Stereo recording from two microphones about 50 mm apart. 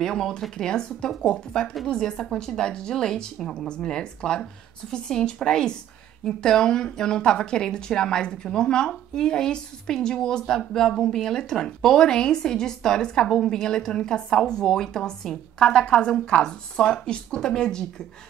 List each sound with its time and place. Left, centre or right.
0.0 s speech: centre